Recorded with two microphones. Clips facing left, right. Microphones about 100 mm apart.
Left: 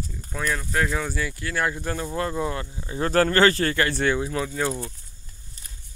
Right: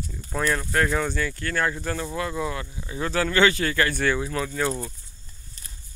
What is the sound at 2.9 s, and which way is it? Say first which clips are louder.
Speech: left 4 dB; 40° left (ahead or behind).